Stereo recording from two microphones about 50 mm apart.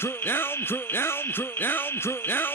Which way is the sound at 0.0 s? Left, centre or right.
Left.